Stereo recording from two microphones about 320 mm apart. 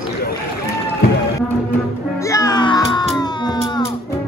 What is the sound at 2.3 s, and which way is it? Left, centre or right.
Music, centre.